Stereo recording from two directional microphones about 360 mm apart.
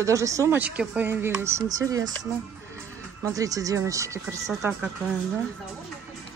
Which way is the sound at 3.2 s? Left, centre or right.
Centre.